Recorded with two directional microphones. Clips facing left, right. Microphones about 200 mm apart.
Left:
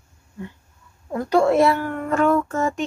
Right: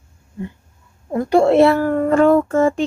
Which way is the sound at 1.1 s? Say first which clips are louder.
Right 4 dB; 25° right (ahead or behind).